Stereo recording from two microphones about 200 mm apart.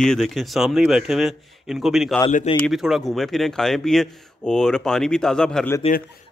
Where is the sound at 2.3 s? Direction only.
30° left (ahead or behind).